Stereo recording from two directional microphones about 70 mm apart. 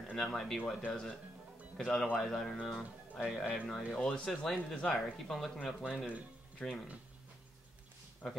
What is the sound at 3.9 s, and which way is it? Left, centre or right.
Speech, centre.